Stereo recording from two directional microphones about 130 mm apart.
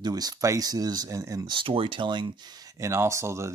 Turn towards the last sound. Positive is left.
turn(degrees=-20)  # may be behind; listen again after turning